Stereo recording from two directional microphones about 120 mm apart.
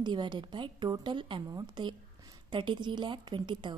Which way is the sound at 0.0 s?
40° right (ahead or behind).